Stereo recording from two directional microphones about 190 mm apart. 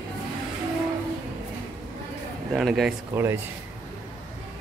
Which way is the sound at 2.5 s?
Centre (ahead or behind).